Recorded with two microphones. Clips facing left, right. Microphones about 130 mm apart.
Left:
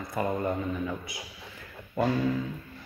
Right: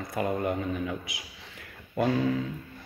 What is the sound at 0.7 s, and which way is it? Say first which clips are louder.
Speech: even; 75° right (ahead or behind).